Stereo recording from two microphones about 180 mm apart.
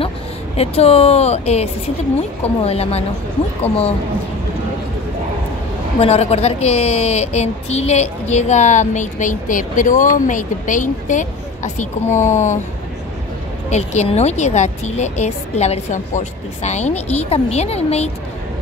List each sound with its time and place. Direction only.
0.6 s a woman's voice: 35° left (ahead or behind)
5.9 s a woman's voice: 35° left (ahead or behind)
13.7 s a woman's voice: 40° left (ahead or behind)